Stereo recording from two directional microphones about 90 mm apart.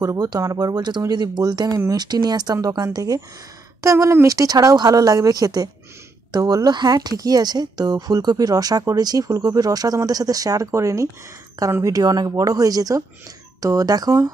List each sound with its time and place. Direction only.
0.0 s speech: 40° right (ahead or behind)